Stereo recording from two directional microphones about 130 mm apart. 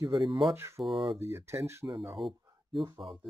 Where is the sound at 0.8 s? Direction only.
40° right (ahead or behind).